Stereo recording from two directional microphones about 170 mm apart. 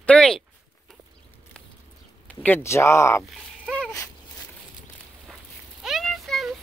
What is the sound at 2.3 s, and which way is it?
Speech, 10° left (ahead or behind).